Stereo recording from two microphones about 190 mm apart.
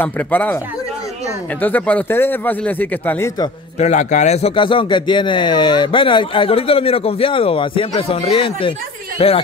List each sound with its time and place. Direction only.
0.0 s speech: 10° left (ahead or behind)
1.6 s speech: 10° left (ahead or behind)
3.7 s a man's voice: 35° left (ahead or behind)